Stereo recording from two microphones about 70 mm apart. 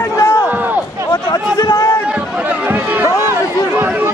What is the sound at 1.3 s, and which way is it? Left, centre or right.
Chatter, left.